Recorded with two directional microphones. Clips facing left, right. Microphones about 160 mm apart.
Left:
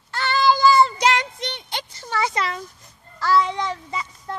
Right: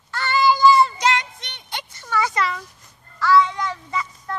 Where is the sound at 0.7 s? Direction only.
35° left (ahead or behind).